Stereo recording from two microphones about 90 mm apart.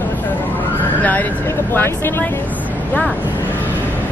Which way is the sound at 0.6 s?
20° left (ahead or behind).